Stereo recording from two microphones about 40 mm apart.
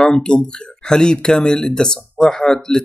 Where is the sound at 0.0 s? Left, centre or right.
Left.